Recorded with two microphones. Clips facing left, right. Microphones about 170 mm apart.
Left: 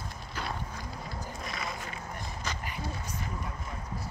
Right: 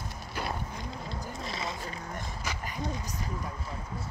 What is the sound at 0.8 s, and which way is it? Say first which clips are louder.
Vehicle: right 2 dB; 25° right (ahead or behind).